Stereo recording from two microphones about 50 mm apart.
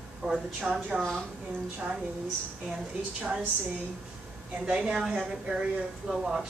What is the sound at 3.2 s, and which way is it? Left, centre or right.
Speech, right.